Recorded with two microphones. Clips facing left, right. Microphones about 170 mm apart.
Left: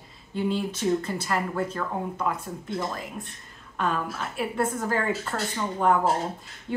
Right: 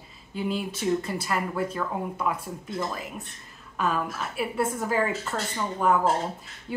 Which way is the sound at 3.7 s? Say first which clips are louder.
Even; 5° right (ahead or behind).